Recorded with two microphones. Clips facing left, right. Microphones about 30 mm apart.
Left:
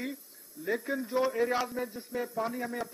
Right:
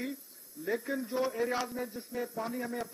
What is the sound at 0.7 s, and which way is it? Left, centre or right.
A man's voice, centre.